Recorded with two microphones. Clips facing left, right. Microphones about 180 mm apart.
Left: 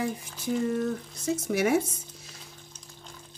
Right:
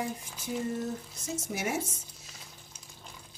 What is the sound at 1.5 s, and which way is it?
Speech, 60° left (ahead or behind).